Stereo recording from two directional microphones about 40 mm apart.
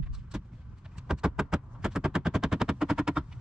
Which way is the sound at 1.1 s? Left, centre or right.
Centre.